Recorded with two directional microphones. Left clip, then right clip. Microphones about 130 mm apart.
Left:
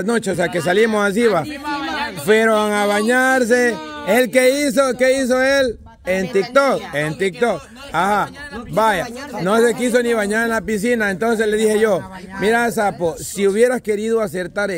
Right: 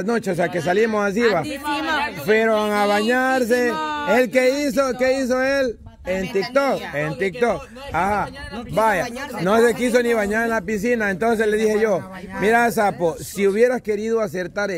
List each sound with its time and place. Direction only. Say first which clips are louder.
0.0 s speech: left 2 dB; 20° left (ahead or behind)
2.7 s a man's voice: left 1 dB; 15° left (ahead or behind)
3.1 s a man's voice: left 4 dB; 25° left (ahead or behind)
12.4 s a man's voice: even; 10° left (ahead or behind)
13.5 s speech: left 2 dB; 20° left (ahead or behind)